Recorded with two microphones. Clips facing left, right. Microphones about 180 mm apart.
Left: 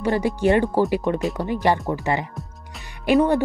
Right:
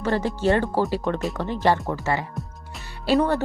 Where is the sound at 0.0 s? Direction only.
15° left (ahead or behind).